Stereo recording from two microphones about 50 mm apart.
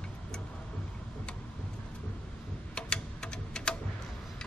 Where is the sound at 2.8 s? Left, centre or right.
Centre.